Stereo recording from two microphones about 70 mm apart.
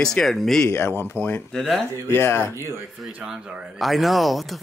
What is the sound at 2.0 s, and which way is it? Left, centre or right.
Speech, left.